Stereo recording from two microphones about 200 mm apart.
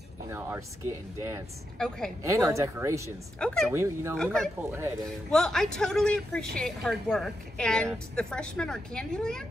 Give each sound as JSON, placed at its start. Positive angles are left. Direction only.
{"t": 0.3, "sound": "speech", "side_deg": -10}
{"t": 1.8, "sound": "a woman's voice", "side_deg": 5}
{"t": 2.2, "sound": "speech", "side_deg": -15}
{"t": 3.3, "sound": "a woman's voice", "side_deg": 5}
{"t": 3.7, "sound": "speech", "side_deg": -15}
{"t": 4.2, "sound": "a woman's voice", "side_deg": 5}
{"t": 4.6, "sound": "speech", "side_deg": -10}
{"t": 5.3, "sound": "a woman's voice", "side_deg": 0}